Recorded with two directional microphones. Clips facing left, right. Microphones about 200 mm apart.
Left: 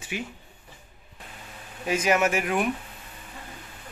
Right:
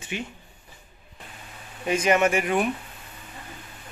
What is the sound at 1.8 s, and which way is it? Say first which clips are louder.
Speech: right 2 dB; 5° left (ahead or behind).